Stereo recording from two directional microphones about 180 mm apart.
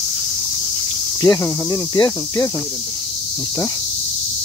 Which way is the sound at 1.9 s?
20° left (ahead or behind).